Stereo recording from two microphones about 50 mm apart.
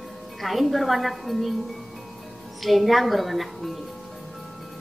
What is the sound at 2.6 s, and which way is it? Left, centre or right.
A woman's voice, centre.